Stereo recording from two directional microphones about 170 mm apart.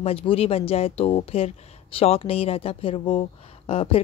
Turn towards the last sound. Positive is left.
turn(degrees=35)  # may be behind; listen again after turning